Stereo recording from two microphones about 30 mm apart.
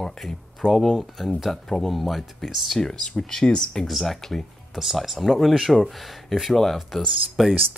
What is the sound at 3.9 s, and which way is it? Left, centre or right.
Speech, centre.